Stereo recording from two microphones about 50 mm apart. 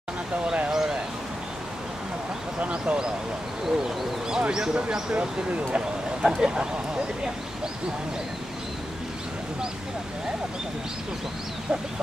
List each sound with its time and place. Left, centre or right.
0.7 s a sound: centre
2.6 s speech: right
3.6 s bird: centre
4.4 s speech: centre
6.2 s speech: centre